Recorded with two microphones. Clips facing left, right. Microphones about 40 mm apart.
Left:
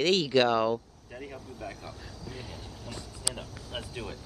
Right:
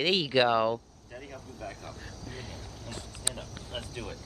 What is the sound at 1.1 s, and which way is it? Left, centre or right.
Speech, centre.